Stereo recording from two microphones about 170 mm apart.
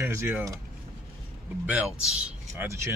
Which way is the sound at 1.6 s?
5° right (ahead or behind).